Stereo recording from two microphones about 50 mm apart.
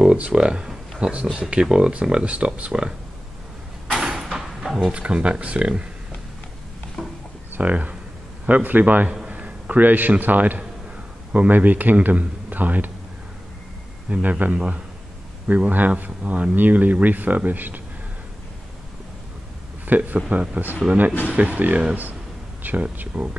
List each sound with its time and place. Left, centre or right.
0.0 s speech: right
0.7 s a sound: centre
1.5 s speech: centre
4.0 s sliding door: centre
4.7 s speech: right
7.0 s a sound: centre
7.5 s a man's voice: right
14.2 s speech: right
19.9 s speech: right
21.1 s speech: left
21.4 s speech: right